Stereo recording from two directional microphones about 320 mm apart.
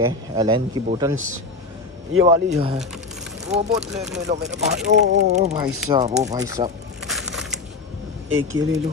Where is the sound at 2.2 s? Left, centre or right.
Centre.